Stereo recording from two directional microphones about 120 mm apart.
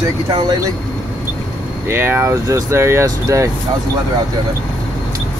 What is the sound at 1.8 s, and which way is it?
Speech, 20° right (ahead or behind).